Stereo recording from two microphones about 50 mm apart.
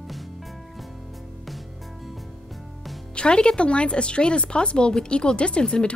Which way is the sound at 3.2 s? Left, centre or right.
Centre.